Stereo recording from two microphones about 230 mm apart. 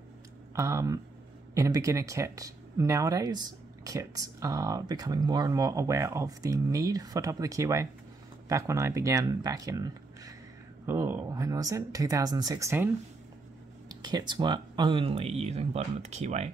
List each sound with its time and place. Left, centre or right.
0.6 s speech: centre; by 16.4 s right